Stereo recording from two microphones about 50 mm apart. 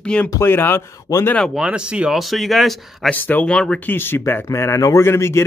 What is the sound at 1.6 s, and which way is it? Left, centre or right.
Speech, right.